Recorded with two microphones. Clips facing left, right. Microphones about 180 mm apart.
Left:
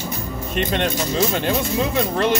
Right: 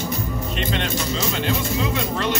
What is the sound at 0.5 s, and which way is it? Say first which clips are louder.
Speech: left 6 dB; 50° left (ahead or behind).